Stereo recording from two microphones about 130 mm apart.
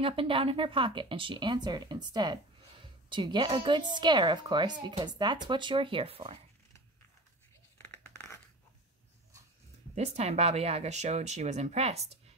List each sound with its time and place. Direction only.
0.0 s speech: 45° right (ahead or behind)
7.7 s a sound: 15° left (ahead or behind)
9.9 s speech: 55° right (ahead or behind)